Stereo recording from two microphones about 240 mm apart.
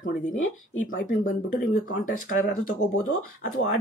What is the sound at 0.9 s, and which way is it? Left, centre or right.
Speech, left.